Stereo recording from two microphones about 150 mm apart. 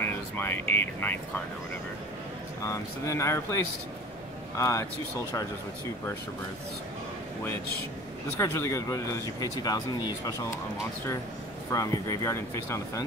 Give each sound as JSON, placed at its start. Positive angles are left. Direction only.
{"t": 0.0, "sound": "speech", "side_deg": 15}
{"t": 2.6, "sound": "speech", "side_deg": 20}
{"t": 8.4, "sound": "speech", "side_deg": 20}
{"t": 11.7, "sound": "speech", "side_deg": 20}